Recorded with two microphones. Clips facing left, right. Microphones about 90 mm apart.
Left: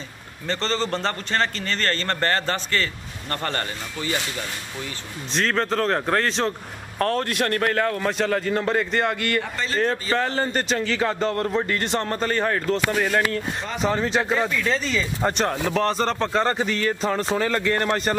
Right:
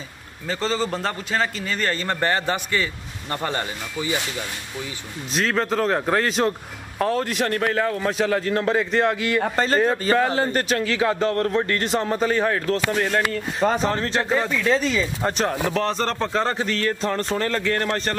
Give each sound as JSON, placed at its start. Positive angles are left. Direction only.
{"t": 0.5, "sound": "a man's voice", "side_deg": -5}
{"t": 5.3, "sound": "a man's voice", "side_deg": -5}
{"t": 9.4, "sound": "a man's voice", "side_deg": -45}
{"t": 10.1, "sound": "a man's voice", "side_deg": -5}
{"t": 13.6, "sound": "a man's voice", "side_deg": -45}
{"t": 13.8, "sound": "a man's voice", "side_deg": 0}